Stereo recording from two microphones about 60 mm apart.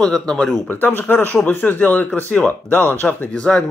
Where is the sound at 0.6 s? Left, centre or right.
Left.